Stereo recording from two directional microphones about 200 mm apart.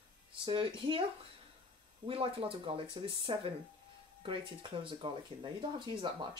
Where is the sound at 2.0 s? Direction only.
25° right (ahead or behind).